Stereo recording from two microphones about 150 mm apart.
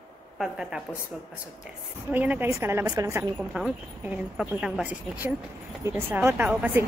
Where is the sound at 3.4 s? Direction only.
5° right (ahead or behind).